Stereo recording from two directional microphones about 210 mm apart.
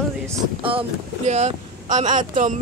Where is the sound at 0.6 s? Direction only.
25° right (ahead or behind).